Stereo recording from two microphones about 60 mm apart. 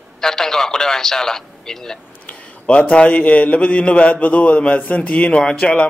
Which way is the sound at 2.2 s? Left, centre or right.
Left.